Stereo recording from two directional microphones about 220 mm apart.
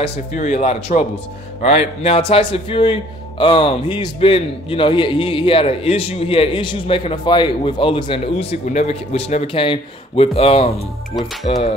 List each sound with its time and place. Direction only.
0.0 s a man's voice: 30° left (ahead or behind)